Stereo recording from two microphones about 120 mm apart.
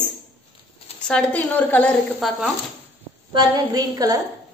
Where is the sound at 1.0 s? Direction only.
10° left (ahead or behind).